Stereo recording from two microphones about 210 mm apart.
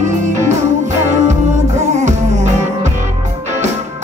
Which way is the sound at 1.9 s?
35° right (ahead or behind).